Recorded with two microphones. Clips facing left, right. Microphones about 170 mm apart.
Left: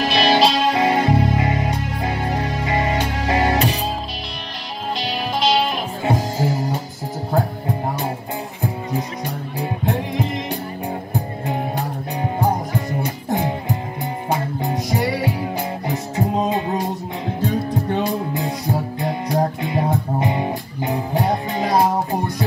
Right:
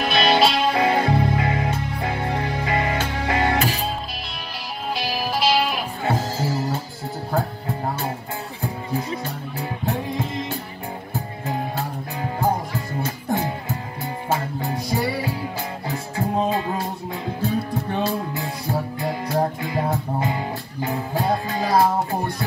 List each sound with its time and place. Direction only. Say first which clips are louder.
0.1 s music: left 1 dB; centre (ahead or behind)
0.7 s music: left 2 dB; 20° left (ahead or behind)
4.9 s music: left 1 dB; 5° right (ahead or behind)
6.0 s music: left 3 dB; 20° left (ahead or behind)
8.9 s music: left 1 dB; 20° left (ahead or behind)
11.4 s music: left 1 dB; 20° left (ahead or behind)